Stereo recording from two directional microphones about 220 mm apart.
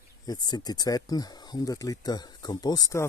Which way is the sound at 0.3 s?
20° left (ahead or behind).